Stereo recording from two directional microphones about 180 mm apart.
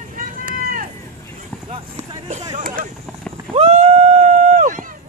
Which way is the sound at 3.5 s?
35° right (ahead or behind).